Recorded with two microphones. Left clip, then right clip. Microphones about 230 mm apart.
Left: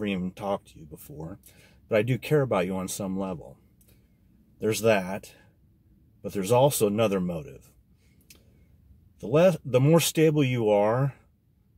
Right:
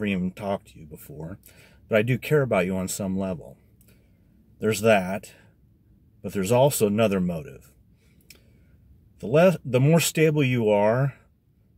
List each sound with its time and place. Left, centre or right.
0.0 s speech: centre
4.6 s speech: centre
6.3 s a man's voice: centre
9.3 s speech: centre